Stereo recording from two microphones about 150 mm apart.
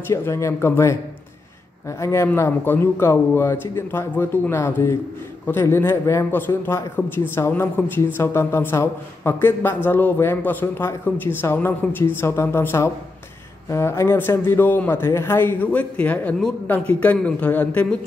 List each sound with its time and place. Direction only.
0.1 s a man's voice: 20° left (ahead or behind)